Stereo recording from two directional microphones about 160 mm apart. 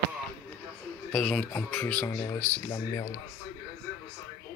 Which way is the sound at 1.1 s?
5° left (ahead or behind).